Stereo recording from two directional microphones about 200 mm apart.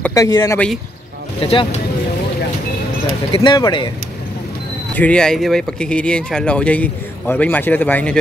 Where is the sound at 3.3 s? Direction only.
20° left (ahead or behind).